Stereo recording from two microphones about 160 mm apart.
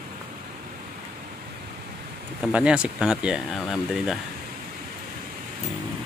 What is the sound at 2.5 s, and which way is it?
Speech, 5° right (ahead or behind).